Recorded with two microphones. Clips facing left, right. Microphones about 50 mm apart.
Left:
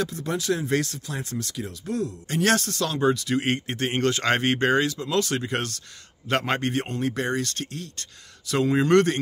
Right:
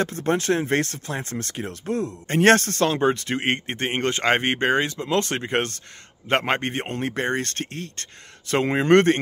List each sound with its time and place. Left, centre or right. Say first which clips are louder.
0.0 s a man's voice: right 5 dB; right